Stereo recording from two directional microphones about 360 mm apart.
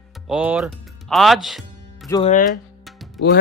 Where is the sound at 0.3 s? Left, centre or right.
Centre.